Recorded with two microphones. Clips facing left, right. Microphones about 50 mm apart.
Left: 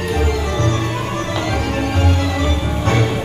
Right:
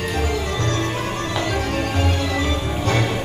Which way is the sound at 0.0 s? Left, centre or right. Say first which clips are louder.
Left 4 dB; centre.